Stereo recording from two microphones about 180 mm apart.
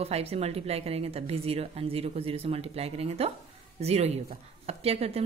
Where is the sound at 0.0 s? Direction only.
35° right (ahead or behind).